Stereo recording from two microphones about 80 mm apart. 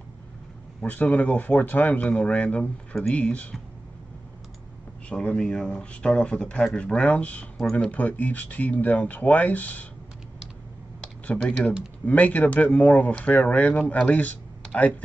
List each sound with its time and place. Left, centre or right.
1.2 s speech: centre
5.1 s speech: centre
11.2 s speech: centre